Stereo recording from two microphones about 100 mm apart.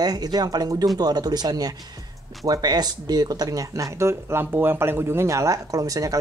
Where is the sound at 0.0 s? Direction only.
40° right (ahead or behind).